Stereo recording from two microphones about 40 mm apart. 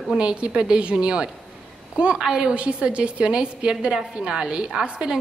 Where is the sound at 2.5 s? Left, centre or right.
Right.